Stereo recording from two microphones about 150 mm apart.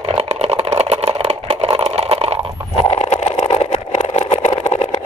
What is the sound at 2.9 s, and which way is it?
Vehicle, 50° left (ahead or behind).